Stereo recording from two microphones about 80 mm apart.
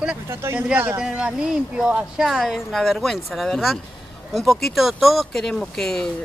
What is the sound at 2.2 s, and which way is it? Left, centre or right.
Speech, centre.